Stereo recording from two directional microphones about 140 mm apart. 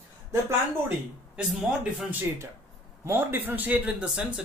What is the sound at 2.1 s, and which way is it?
A man's voice, 15° right (ahead or behind).